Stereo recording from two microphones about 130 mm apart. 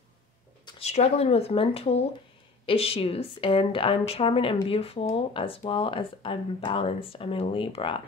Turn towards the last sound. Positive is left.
turn(degrees=45)  # may be behind; listen again after turning